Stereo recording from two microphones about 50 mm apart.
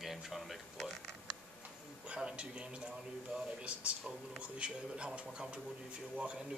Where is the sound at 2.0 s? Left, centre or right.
Right.